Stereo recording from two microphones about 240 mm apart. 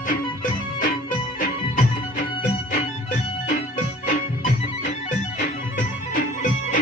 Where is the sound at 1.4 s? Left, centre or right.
Left.